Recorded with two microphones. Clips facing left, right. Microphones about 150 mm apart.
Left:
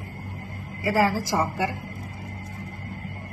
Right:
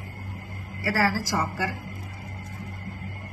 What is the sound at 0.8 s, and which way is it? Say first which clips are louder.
Speech: left 3 dB; 20° left (ahead or behind).